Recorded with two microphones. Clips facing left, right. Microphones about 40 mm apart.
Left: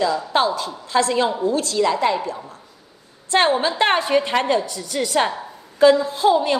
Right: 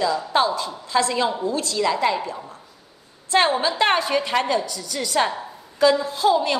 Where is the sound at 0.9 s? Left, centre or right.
Centre.